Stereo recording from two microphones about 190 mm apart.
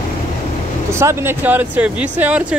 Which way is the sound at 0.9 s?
15° right (ahead or behind).